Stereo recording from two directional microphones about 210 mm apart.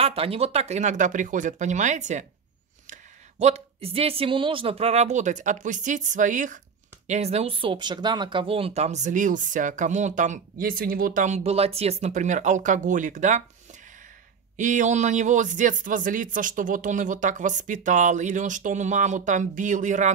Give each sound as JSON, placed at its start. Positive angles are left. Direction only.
{"t": 0.0, "sound": "speech", "side_deg": -25}